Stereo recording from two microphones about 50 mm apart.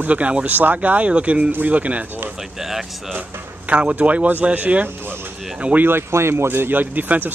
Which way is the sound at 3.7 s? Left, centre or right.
Right.